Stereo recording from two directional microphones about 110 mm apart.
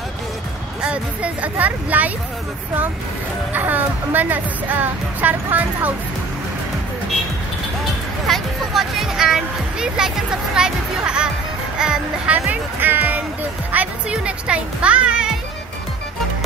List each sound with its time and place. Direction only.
0.8 s speech: 10° right (ahead or behind)
3.5 s speech: 15° right (ahead or behind)
8.3 s speech: centre (ahead or behind)